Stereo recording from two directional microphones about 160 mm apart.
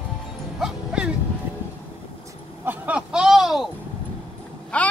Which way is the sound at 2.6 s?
10° right (ahead or behind).